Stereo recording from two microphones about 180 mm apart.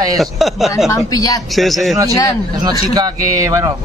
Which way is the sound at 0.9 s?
20° left (ahead or behind).